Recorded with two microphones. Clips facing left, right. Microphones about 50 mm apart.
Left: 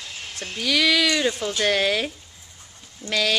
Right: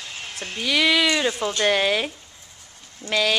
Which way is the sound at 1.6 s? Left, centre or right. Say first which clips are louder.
Right 1 dB; centre.